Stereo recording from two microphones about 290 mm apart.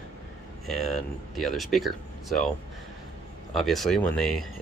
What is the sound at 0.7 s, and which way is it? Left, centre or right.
Speech, centre.